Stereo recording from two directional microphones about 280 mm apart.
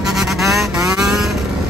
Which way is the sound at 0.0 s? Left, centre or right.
Centre.